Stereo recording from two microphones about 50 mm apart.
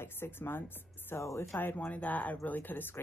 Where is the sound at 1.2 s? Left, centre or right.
Left.